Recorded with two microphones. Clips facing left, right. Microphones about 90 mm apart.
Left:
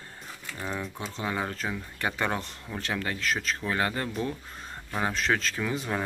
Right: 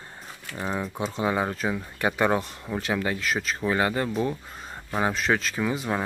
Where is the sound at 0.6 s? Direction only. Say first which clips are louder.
Right 6 dB; 30° right (ahead or behind).